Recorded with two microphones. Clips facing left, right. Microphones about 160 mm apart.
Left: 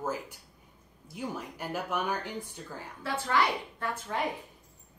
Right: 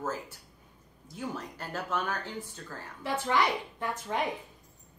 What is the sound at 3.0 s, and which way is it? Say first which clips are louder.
A woman's voice: right 1 dB; 15° right (ahead or behind).